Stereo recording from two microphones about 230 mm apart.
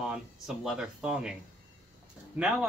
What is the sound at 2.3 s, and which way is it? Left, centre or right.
Speech, centre.